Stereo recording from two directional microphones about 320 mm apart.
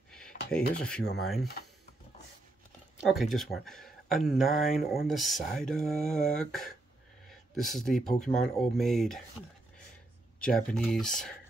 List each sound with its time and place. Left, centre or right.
0.4 s speech: left
1.2 s speech: centre
3.0 s speech: centre
10.4 s speech: centre